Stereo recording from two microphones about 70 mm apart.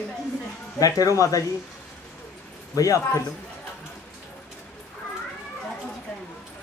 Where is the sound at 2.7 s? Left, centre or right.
Left.